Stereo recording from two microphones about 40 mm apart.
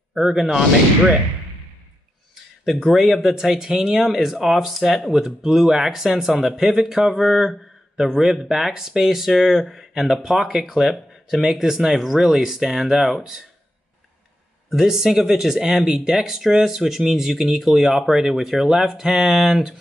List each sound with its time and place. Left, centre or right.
0.1 s speech: centre
2.8 s speech: centre
10.1 s speech: centre
10.4 s speech: centre
14.7 s speech: centre